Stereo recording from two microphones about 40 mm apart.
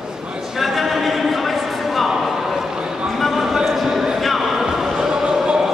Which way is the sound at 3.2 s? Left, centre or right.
Centre.